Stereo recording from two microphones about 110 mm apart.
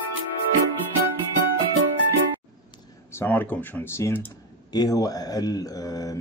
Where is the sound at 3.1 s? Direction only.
20° left (ahead or behind).